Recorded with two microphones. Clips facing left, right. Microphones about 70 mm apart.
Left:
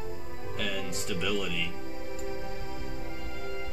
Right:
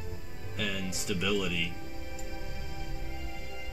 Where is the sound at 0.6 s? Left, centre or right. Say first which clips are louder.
Left 1 dB; centre.